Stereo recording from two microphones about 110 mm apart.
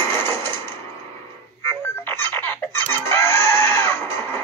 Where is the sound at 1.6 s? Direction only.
20° left (ahead or behind).